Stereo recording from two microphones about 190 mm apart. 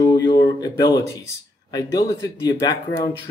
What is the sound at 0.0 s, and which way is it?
Speech, 25° left (ahead or behind).